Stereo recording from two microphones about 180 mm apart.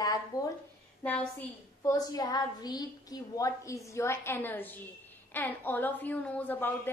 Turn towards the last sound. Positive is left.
turn(degrees=10)  # may be behind; listen again after turning